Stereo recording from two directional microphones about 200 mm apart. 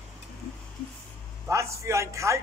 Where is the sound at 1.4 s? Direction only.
15° right (ahead or behind).